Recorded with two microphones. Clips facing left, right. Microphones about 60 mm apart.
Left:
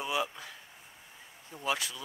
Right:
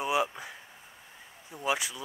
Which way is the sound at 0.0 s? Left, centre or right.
Right.